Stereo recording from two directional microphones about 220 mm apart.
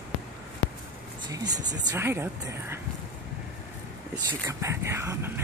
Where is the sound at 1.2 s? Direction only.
20° right (ahead or behind).